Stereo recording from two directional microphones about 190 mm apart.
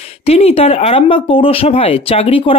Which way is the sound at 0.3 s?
30° left (ahead or behind).